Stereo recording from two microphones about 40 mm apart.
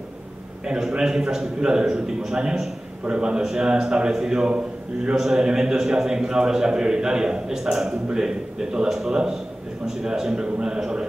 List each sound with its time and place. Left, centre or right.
0.7 s a man's voice: centre
4.5 s a man's voice: right
5.1 s a man's voice: centre